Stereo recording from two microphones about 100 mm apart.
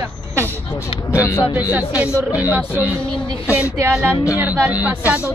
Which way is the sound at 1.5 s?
15° right (ahead or behind).